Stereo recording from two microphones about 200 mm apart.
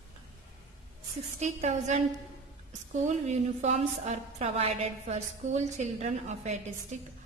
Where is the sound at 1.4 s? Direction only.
35° right (ahead or behind).